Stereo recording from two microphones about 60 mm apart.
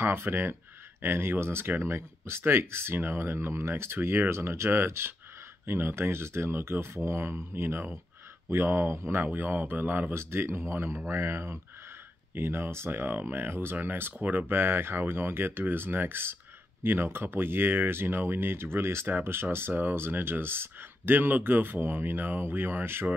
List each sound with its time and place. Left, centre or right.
0.0 s speech: right
9.2 s speech: right
10.1 s speech: right